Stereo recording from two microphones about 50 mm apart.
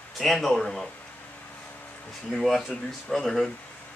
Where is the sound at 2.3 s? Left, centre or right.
Centre.